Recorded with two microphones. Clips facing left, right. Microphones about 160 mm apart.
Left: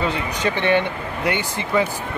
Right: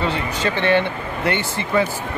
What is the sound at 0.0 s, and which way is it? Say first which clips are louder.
Speech: even; 15° left (ahead or behind).